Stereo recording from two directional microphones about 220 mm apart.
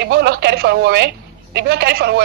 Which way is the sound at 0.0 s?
50° right (ahead or behind).